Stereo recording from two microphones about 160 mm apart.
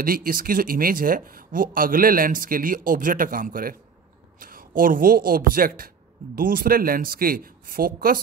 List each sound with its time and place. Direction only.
0.0 s speech: 60° right (ahead or behind)